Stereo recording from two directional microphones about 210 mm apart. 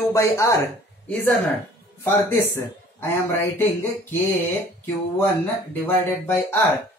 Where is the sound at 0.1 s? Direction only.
15° left (ahead or behind).